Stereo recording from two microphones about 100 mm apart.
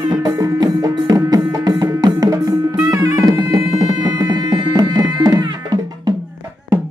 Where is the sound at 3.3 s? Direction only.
40° right (ahead or behind).